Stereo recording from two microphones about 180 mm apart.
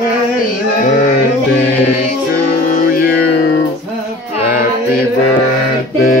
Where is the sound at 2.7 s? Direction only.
50° left (ahead or behind).